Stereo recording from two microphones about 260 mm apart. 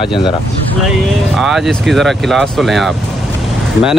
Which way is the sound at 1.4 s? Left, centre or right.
Centre.